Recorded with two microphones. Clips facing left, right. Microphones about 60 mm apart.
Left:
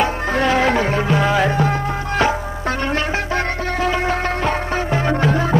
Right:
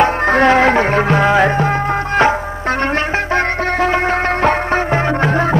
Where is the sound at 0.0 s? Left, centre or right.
Right.